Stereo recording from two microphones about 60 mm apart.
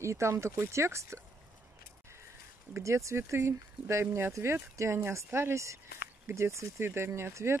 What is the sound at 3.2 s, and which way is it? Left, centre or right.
Speech, right.